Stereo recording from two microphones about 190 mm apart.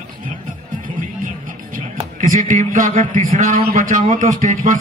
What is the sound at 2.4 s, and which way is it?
A man's voice, 45° right (ahead or behind).